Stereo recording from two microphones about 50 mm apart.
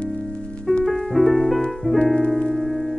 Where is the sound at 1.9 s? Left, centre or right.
Left.